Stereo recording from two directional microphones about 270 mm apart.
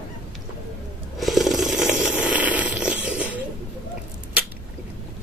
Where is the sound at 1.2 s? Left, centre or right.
Centre.